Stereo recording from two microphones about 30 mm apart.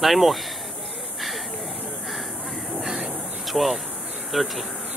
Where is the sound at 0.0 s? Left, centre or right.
Centre.